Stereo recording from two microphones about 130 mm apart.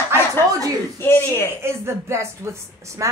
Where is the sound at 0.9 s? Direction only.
20° left (ahead or behind).